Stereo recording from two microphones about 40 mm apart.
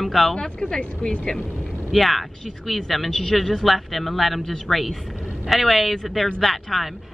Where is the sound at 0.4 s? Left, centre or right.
Left.